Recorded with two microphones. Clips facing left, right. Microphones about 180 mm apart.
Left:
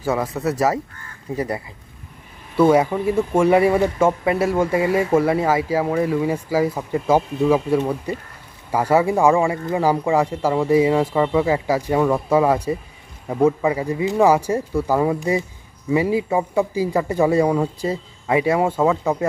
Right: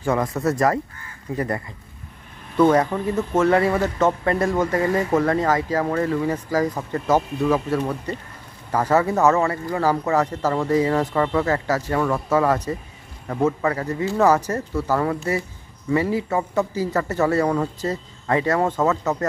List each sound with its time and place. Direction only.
0.0 s speech: 5° left (ahead or behind)